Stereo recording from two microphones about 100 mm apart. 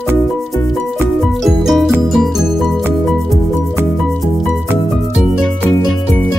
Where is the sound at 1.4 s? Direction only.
Centre (ahead or behind).